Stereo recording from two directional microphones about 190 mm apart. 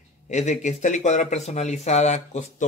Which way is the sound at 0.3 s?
35° left (ahead or behind).